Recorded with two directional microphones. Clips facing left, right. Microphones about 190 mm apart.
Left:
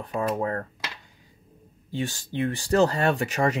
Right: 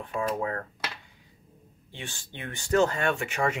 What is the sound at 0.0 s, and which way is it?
Speech, 40° left (ahead or behind).